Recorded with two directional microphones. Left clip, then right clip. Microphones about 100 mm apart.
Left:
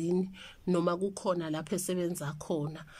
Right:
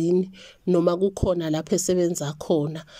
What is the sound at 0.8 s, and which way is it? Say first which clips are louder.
Speech: right 8 dB; 40° right (ahead or behind).